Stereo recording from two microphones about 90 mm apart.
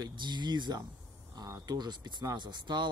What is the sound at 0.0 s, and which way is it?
Speech, 55° right (ahead or behind).